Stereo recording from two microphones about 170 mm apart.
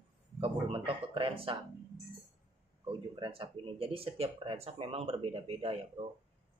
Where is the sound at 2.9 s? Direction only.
30° right (ahead or behind).